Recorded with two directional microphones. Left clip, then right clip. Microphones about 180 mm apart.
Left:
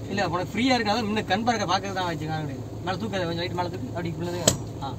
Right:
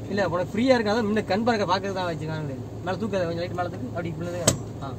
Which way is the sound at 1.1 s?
25° right (ahead or behind).